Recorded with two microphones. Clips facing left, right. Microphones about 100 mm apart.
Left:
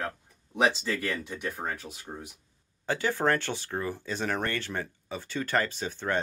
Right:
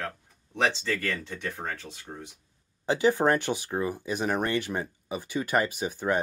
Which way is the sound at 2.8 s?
20° right (ahead or behind).